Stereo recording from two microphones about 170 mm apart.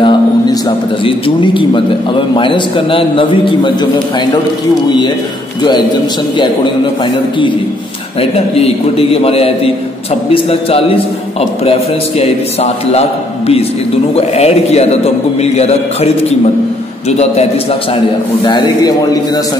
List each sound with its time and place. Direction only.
0.0 s a man's voice: 25° left (ahead or behind)
5.6 s a man's voice: 25° left (ahead or behind)
8.2 s a man's voice: 35° left (ahead or behind)
14.1 s a man's voice: 35° left (ahead or behind)
18.4 s a man's voice: 25° left (ahead or behind)